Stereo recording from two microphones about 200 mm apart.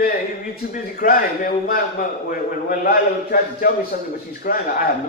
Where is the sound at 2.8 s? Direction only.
45° left (ahead or behind).